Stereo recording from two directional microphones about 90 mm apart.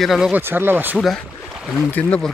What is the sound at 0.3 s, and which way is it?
Speech, 25° right (ahead or behind).